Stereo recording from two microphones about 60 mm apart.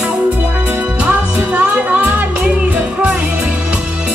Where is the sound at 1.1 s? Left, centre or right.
Right.